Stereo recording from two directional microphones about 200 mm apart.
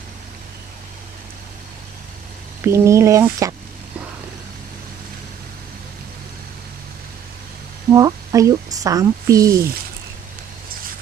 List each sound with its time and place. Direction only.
2.6 s speech: 15° right (ahead or behind)
7.9 s speech: 15° right (ahead or behind)